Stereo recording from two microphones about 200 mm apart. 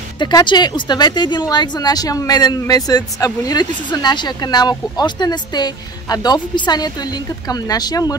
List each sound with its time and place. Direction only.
0.2 s speech: 20° left (ahead or behind)